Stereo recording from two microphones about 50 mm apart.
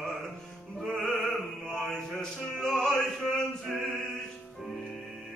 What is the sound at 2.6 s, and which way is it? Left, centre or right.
Music, centre.